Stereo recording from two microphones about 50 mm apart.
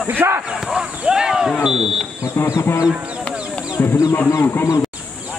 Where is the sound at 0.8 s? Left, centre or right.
Centre.